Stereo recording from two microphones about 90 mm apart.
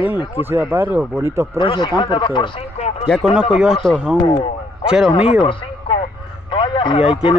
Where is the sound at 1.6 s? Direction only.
60° left (ahead or behind).